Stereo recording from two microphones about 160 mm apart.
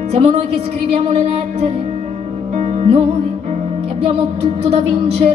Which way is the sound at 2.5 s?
40° right (ahead or behind).